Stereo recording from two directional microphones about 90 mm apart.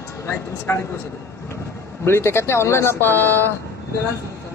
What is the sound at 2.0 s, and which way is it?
Speech, 30° left (ahead or behind).